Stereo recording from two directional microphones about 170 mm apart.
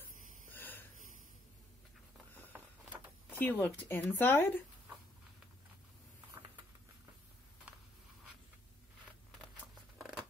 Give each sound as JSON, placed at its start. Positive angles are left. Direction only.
{"t": 0.5, "sound": "wheeze", "side_deg": 10}
{"t": 2.5, "sound": "a sound", "side_deg": -10}
{"t": 3.3, "sound": "speech", "side_deg": 10}
{"t": 9.9, "sound": "scissors", "side_deg": 0}